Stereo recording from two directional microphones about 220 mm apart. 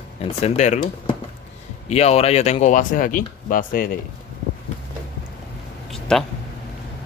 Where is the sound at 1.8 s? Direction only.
30° left (ahead or behind).